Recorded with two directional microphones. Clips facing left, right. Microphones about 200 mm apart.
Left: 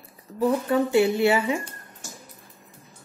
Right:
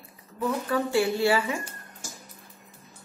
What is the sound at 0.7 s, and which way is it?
Speech, 20° left (ahead or behind).